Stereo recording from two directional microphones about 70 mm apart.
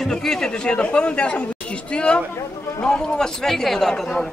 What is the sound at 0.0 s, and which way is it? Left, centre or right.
A man's voice, centre.